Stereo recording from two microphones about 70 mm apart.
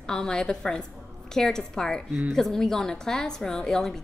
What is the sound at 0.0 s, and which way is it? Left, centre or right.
A woman's voice, centre.